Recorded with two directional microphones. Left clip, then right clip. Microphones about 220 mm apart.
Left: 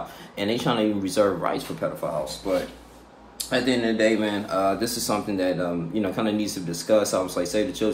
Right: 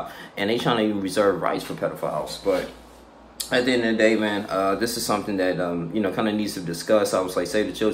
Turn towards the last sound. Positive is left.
turn(degrees=-10)  # may be behind; listen again after turning